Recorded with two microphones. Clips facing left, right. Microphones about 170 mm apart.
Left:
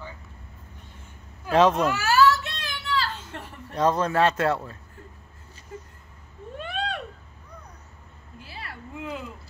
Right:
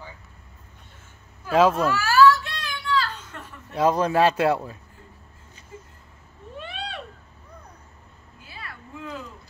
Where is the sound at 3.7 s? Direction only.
10° right (ahead or behind).